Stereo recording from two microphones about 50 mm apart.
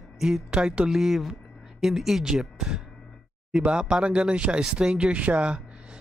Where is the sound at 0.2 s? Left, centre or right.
Centre.